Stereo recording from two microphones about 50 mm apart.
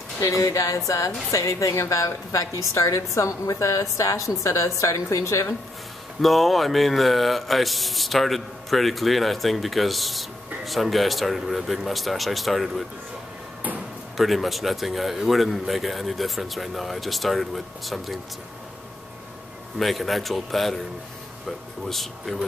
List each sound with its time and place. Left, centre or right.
0.3 s a woman's voice: left
6.2 s speech: centre
14.1 s speech: centre
19.8 s speech: centre